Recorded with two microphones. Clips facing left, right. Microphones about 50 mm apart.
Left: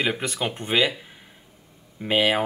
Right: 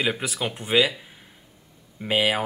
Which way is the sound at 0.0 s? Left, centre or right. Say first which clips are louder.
Left 1 dB; centre.